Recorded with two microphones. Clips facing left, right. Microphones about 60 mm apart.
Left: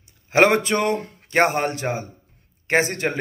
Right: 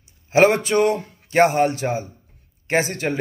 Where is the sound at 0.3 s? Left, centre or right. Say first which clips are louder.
Right 1 dB; left.